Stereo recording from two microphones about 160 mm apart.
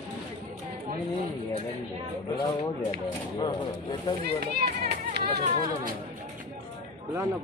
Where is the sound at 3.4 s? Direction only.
30° left (ahead or behind).